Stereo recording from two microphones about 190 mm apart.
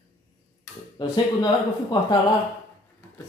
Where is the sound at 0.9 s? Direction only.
25° left (ahead or behind).